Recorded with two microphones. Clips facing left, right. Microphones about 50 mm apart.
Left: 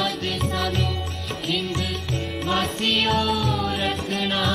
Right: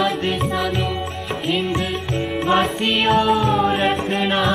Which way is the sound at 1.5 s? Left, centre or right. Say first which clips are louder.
Right 5 dB; right.